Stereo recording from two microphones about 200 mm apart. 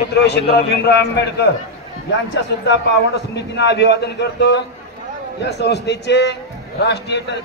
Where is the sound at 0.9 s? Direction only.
60° left (ahead or behind).